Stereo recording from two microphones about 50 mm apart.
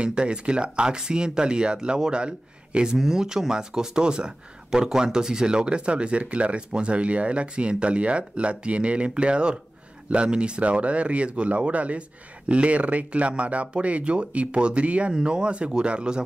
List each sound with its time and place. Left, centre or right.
0.0 s speech: centre